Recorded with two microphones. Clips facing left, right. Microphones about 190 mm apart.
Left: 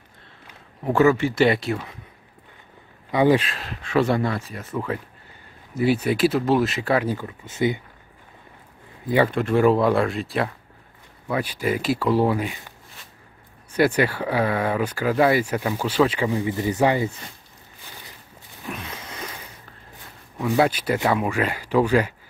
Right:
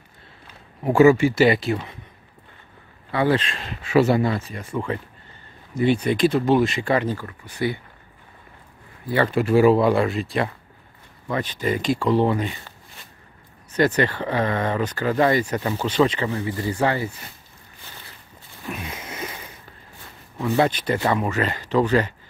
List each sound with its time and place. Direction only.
0.8 s speech: 10° right (ahead or behind)
3.1 s speech: 15° left (ahead or behind)
3.4 s speech: centre (ahead or behind)
7.2 s speech: 20° left (ahead or behind)
9.3 s speech: 5° right (ahead or behind); by 17.1 s 20° left (ahead or behind)
18.8 s a sound: 10° right (ahead or behind)
20.3 s speech: 5° left (ahead or behind)